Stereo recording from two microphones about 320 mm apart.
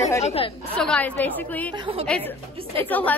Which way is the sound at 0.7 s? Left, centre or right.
Centre.